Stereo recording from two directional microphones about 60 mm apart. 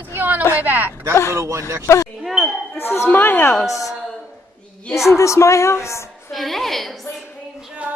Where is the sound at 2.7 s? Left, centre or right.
Left.